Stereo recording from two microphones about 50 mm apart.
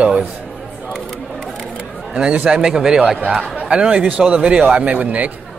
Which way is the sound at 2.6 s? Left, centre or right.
Centre.